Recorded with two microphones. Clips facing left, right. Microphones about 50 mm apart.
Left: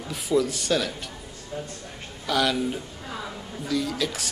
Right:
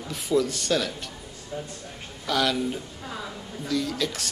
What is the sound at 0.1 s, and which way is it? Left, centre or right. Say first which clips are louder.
A man's voice: left 1 dB; centre.